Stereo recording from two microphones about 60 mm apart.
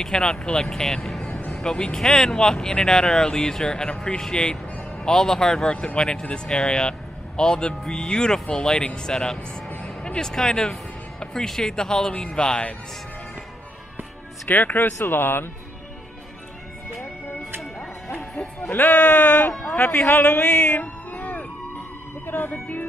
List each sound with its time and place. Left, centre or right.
0.0 s speech: centre
14.5 s speech: left
18.6 s a man's voice: left
20.1 s music: left